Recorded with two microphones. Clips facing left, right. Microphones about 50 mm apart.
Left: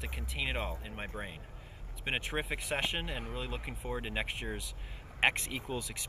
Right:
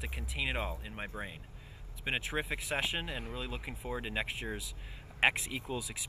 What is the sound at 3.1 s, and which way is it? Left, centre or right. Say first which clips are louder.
Speech: even; left.